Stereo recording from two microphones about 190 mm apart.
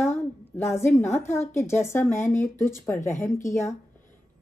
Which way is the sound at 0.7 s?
15° left (ahead or behind).